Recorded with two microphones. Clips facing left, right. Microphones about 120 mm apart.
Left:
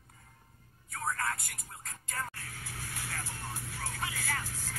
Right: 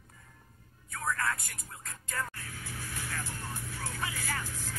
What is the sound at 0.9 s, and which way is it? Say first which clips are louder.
Vehicle: right 2 dB; 30° left (ahead or behind).